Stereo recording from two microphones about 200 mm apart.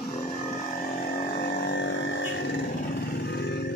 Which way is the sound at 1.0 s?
50° left (ahead or behind).